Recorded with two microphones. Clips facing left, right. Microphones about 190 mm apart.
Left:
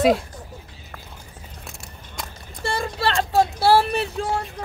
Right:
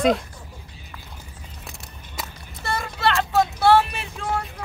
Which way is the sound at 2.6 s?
30° left (ahead or behind).